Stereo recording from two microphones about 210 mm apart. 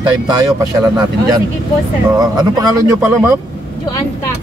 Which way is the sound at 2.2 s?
15° right (ahead or behind).